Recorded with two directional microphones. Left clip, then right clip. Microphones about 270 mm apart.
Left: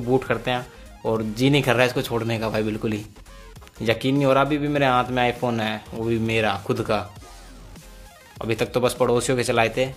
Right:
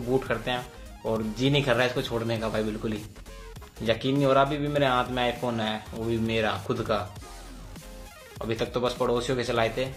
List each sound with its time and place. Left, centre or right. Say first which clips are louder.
0.1 s speech: left 5 dB; left
8.4 s speech: left 6 dB; left